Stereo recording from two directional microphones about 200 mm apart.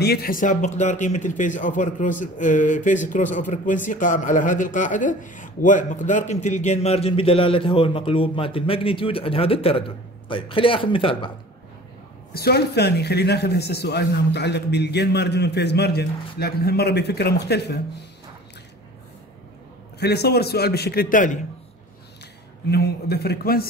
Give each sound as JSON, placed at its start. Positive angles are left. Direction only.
{"t": 0.0, "sound": "speech", "side_deg": 50}
{"t": 12.4, "sound": "a man's voice", "side_deg": 55}
{"t": 20.0, "sound": "a man's voice", "side_deg": 55}
{"t": 22.7, "sound": "a man's voice", "side_deg": 55}